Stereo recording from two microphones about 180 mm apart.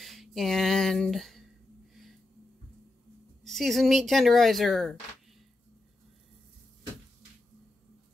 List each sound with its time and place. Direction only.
0.0 s speech: centre (ahead or behind)
3.4 s speech: centre (ahead or behind)